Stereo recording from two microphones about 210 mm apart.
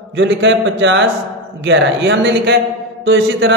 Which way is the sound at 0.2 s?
60° right (ahead or behind).